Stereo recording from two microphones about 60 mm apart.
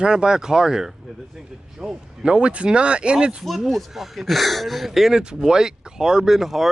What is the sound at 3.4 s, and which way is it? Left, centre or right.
Speech, centre.